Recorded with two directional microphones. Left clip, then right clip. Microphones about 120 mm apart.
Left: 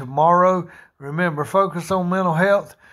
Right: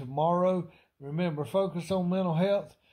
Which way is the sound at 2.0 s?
15° right (ahead or behind).